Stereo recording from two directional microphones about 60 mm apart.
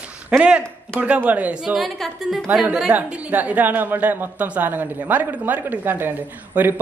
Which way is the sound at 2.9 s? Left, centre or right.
Right.